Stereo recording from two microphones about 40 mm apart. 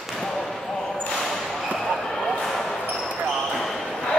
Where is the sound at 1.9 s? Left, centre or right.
Centre.